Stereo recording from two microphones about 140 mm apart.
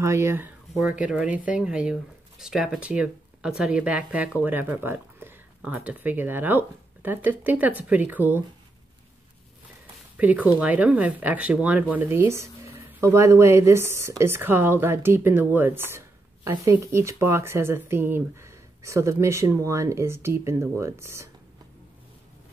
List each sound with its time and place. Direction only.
0.0 s speech: 20° right (ahead or behind)
0.7 s speech: 5° right (ahead or behind)
10.1 s speech: 10° right (ahead or behind)